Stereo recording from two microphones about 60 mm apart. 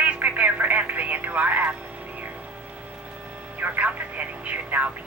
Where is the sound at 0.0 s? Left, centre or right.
Right.